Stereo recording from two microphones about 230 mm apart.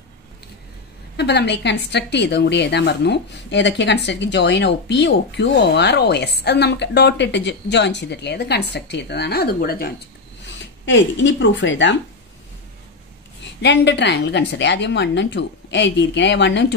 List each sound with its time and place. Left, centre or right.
1.1 s a woman's voice: left
10.4 s speech: left
13.4 s a woman's voice: left